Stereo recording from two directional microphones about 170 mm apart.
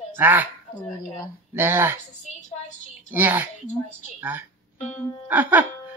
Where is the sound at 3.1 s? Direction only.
10° right (ahead or behind).